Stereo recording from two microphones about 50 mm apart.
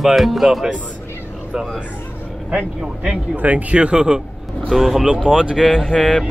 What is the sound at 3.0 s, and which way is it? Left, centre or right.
Speech, right.